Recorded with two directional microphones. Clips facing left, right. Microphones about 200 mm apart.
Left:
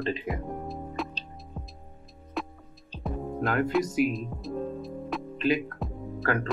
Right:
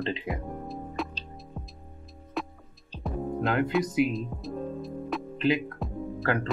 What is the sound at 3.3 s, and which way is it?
Speech, 20° right (ahead or behind).